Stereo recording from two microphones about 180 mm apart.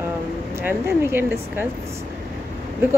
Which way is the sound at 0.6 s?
10° right (ahead or behind).